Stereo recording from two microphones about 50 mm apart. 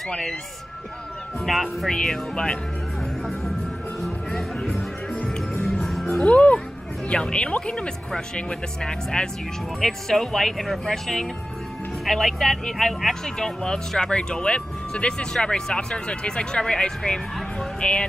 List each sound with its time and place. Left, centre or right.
0.1 s speech: centre
1.4 s speech: centre
1.9 s speech: centre
4.0 s music: centre
6.2 s music: left
7.1 s speech: centre